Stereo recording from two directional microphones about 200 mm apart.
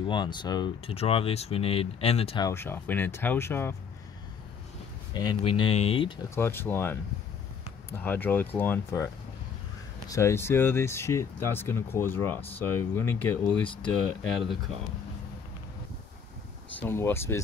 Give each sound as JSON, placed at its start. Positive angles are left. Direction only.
{"t": 0.0, "sound": "speech", "side_deg": 20}
{"t": 2.4, "sound": "speech", "side_deg": 10}
{"t": 5.1, "sound": "speech", "side_deg": 20}
{"t": 6.3, "sound": "speech", "side_deg": 10}
{"t": 16.8, "sound": "speech", "side_deg": 10}